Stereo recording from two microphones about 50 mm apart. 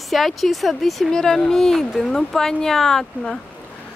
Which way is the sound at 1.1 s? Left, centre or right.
Centre.